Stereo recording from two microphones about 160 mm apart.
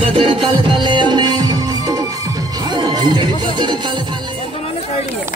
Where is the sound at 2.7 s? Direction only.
30° right (ahead or behind).